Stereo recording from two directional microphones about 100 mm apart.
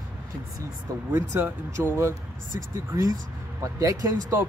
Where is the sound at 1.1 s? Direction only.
20° right (ahead or behind).